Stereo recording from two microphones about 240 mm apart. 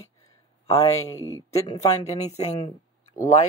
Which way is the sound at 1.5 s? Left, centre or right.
Left.